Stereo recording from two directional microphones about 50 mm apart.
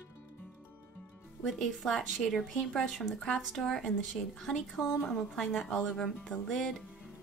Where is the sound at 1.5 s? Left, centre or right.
Centre.